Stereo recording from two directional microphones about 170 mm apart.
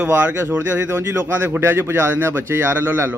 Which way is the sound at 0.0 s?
10° right (ahead or behind).